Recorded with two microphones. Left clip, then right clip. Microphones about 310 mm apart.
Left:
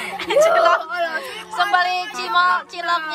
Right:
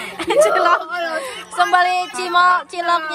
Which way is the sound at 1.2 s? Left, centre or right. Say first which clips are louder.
Right 3 dB; centre.